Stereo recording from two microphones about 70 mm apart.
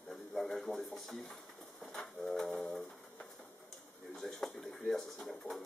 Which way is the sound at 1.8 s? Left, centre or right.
Centre.